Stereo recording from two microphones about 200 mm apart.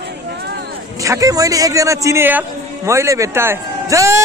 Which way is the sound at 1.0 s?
15° right (ahead or behind).